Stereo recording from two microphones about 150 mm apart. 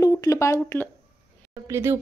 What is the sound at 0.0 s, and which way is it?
Speech, 20° left (ahead or behind).